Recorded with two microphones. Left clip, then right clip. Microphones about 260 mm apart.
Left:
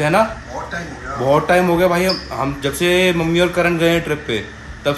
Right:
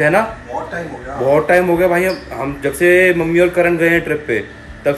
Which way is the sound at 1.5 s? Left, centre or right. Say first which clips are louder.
Right 2 dB; centre.